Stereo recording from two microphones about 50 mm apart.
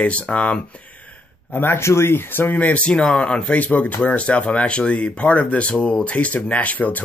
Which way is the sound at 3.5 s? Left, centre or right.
Left.